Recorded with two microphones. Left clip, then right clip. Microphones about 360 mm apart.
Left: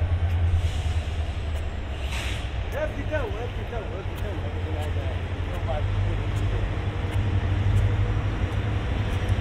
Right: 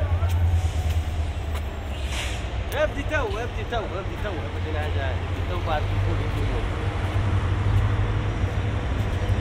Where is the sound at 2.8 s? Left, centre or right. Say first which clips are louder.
Right 6 dB; centre.